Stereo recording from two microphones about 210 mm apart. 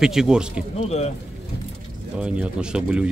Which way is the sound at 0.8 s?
30° left (ahead or behind).